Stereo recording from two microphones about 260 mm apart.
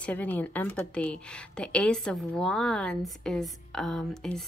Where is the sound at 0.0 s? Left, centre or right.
Centre.